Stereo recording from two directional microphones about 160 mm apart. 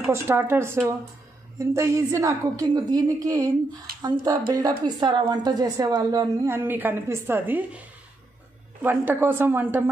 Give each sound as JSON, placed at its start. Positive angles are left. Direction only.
{"t": 0.1, "sound": "a woman's voice", "side_deg": -15}
{"t": 8.8, "sound": "speech", "side_deg": -15}